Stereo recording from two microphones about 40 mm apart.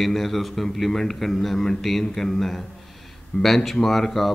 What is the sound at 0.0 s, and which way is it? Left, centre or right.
A man's voice, centre.